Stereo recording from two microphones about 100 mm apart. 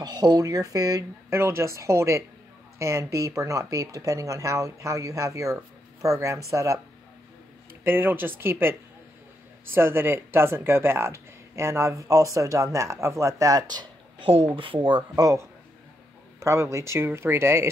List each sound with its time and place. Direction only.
0.0 s speech: 45° right (ahead or behind)
1.3 s speech: 25° right (ahead or behind)
7.8 s speech: 20° right (ahead or behind)
9.8 s speech: 25° right (ahead or behind); by 13.8 s 40° right (ahead or behind)
14.2 s speech: 70° right (ahead or behind)
16.3 s speech: 30° right (ahead or behind)